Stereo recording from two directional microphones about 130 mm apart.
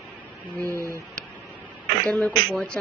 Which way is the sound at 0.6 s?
20° right (ahead or behind).